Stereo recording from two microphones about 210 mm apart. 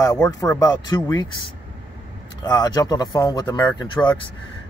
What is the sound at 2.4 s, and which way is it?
Speech, 20° left (ahead or behind).